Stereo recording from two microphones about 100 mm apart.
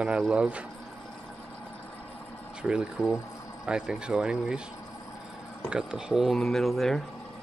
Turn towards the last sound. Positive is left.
turn(degrees=0)  # may be behind; listen again after turning